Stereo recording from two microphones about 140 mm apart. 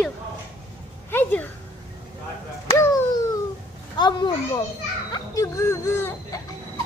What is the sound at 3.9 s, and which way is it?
Speech, 30° left (ahead or behind).